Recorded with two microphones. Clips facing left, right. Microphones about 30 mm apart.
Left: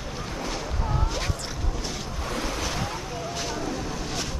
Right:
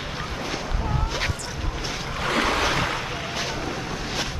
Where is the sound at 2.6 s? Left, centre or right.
Right.